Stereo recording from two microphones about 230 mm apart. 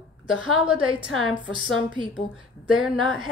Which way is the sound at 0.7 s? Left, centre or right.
Centre.